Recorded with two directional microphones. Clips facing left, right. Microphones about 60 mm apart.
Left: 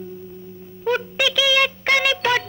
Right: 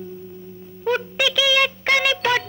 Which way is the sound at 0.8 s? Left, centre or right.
Left.